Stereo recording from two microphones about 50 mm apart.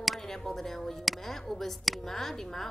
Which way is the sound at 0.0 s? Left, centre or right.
Centre.